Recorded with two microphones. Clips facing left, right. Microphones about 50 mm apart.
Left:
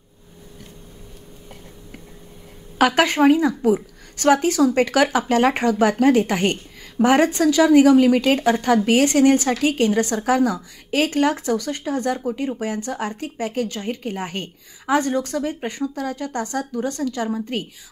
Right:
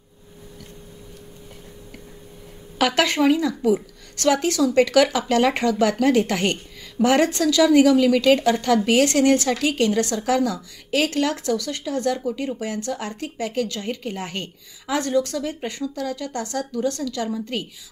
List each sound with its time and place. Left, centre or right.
2.8 s a woman's voice: left